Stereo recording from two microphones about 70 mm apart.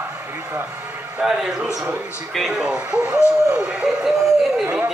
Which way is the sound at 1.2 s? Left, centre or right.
Centre.